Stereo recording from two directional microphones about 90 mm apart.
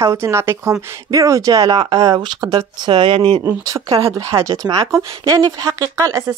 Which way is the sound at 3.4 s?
40° right (ahead or behind).